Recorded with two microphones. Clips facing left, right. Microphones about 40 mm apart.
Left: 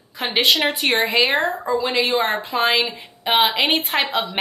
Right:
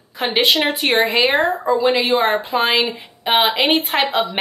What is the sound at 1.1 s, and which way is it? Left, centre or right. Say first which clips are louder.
Speech: right 2 dB; right.